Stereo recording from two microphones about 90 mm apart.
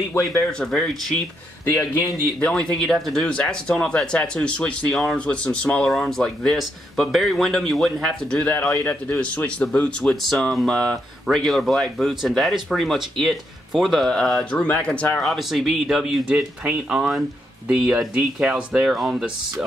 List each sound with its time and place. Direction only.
0.5 s a man's voice: 5° left (ahead or behind)
2.4 s speech: 10° left (ahead or behind)
4.9 s a man's voice: centre (ahead or behind)
5.2 s a man's voice: 15° left (ahead or behind)
8.7 s speech: 25° left (ahead or behind)
9.2 s a man's voice: 15° left (ahead or behind)
15.2 s a man's voice: centre (ahead or behind)